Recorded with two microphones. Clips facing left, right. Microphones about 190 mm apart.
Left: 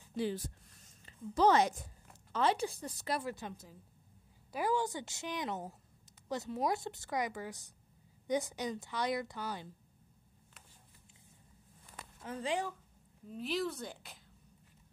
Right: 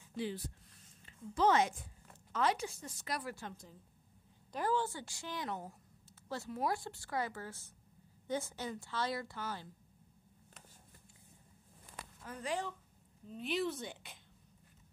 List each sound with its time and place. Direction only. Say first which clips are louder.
0.8 s a woman's voice: left 4 dB; 35° left (ahead or behind); by 9.7 s 15° left (ahead or behind)
12.2 s speech: left 4 dB; 25° left (ahead or behind)
13.3 s a woman's voice: even; centre (ahead or behind)